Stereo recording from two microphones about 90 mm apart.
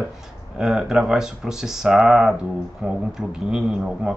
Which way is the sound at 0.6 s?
5° right (ahead or behind).